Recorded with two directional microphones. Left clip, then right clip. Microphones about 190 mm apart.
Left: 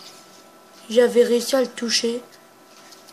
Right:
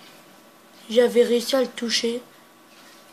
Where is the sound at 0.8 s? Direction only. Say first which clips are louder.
Left 2 dB; 5° left (ahead or behind).